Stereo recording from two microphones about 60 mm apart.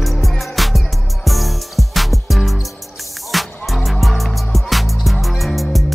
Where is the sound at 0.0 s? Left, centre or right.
Centre.